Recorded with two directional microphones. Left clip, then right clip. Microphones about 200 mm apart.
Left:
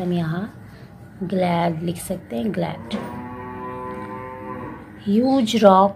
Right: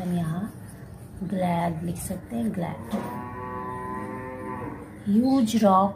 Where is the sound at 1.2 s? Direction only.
15° left (ahead or behind).